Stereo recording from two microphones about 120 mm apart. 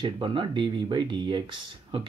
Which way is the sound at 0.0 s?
45° right (ahead or behind).